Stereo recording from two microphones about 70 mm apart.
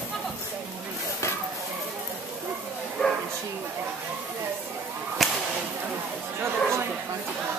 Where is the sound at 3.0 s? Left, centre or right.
Centre.